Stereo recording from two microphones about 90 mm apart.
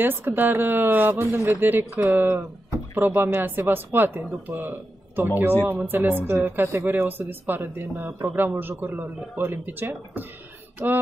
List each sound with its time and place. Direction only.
0.0 s speech: 25° right (ahead or behind)